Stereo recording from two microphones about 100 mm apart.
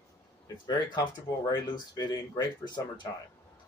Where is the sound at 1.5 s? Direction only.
45° left (ahead or behind).